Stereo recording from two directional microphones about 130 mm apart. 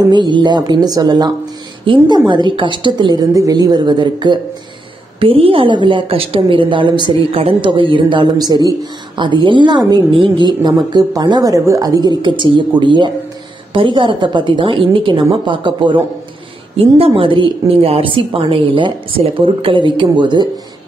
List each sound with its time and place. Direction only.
0.1 s a woman's voice: 35° right (ahead or behind)